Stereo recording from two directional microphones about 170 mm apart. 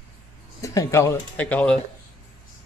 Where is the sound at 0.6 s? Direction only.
20° left (ahead or behind).